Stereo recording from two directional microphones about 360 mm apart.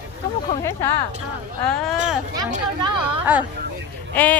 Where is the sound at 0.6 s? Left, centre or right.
Centre.